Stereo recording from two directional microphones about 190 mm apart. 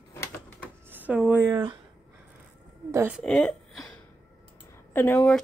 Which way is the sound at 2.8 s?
15° right (ahead or behind).